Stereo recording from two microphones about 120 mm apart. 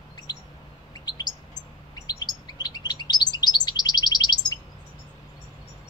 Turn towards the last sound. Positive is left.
turn(degrees=35)  # may be behind; listen again after turning